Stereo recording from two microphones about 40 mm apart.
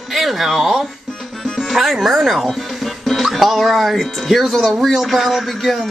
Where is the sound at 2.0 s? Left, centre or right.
Centre.